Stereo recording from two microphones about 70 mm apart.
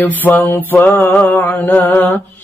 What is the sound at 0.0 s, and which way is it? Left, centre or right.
Mantra, left.